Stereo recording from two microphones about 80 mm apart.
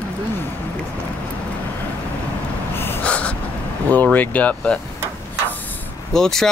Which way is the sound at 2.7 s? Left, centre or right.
Left.